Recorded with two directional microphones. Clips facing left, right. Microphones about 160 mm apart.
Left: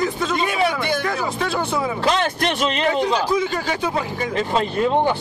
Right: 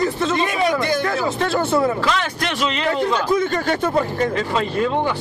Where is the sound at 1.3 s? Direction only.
Centre (ahead or behind).